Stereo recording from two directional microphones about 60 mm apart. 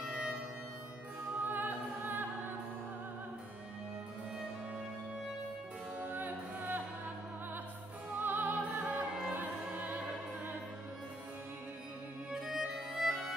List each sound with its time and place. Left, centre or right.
0.0 s music: centre
1.4 s music: right
5.9 s music: right
8.1 s opera: right
12.4 s music: centre